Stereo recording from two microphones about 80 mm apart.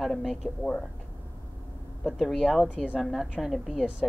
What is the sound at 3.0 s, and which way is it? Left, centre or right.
Speech, centre.